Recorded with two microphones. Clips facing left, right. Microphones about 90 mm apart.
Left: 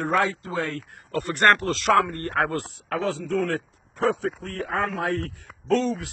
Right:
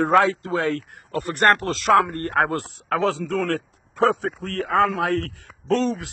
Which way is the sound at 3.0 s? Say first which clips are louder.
Right 1 dB; 90° right.